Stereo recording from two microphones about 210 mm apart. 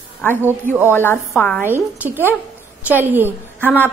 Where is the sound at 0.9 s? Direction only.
10° left (ahead or behind).